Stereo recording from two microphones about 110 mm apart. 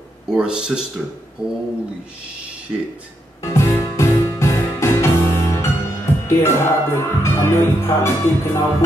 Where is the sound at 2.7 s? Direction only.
5° right (ahead or behind).